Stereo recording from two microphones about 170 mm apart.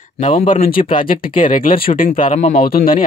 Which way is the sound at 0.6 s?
55° left (ahead or behind).